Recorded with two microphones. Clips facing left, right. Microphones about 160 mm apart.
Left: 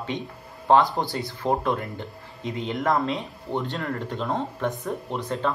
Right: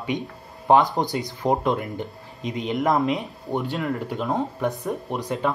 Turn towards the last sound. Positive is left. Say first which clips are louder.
# right 2 dB
turn(degrees=-15)  # may be behind; listen again after turning